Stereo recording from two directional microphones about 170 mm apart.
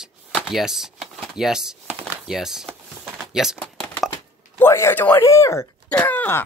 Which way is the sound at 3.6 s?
10° left (ahead or behind).